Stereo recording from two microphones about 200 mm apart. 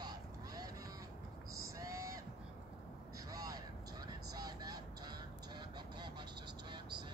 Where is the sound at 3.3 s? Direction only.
20° right (ahead or behind).